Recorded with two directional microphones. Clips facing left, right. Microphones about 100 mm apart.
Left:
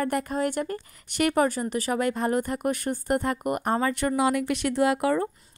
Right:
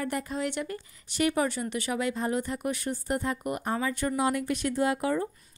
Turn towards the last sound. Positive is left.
turn(degrees=70)  # may be behind; listen again after turning